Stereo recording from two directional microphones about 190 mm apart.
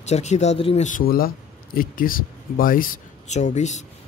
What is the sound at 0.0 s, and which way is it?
Speech, 35° left (ahead or behind).